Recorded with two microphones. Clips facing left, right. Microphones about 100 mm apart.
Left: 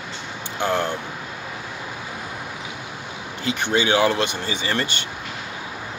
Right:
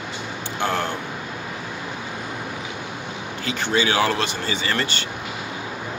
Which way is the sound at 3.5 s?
20° left (ahead or behind).